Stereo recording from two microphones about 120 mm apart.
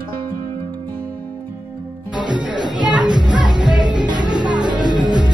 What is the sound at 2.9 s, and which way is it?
Music, 40° right (ahead or behind).